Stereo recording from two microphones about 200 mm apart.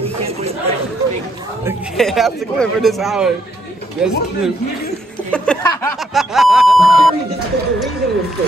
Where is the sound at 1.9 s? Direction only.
Centre (ahead or behind).